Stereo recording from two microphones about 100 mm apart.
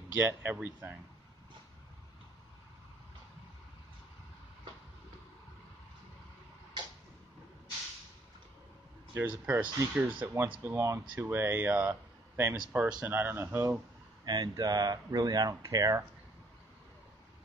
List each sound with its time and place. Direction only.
0.1 s speech: 25° right (ahead or behind)
6.8 s tick-tock: 50° right (ahead or behind)
9.1 s speech: 20° right (ahead or behind)
10.6 s speech: 25° right (ahead or behind)
14.2 s speech: 45° right (ahead or behind)